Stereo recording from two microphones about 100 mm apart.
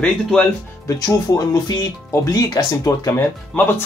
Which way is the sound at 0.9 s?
40° left (ahead or behind).